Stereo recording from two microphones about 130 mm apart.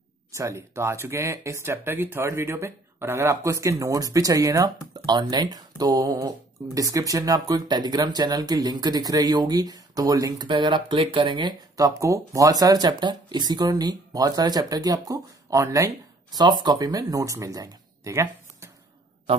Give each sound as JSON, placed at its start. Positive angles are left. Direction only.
{"t": 0.3, "sound": "speech", "side_deg": -20}